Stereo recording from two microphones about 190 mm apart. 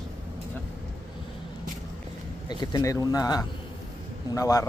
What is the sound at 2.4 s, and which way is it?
Speech, 20° left (ahead or behind).